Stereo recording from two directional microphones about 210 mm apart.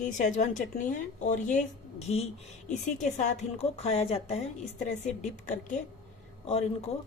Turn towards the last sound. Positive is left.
turn(degrees=30)  # may be behind; listen again after turning